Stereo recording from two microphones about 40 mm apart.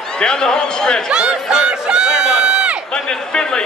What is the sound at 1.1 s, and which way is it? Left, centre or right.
Crowd, centre.